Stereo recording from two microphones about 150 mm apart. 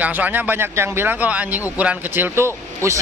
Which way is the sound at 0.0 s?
10° right (ahead or behind).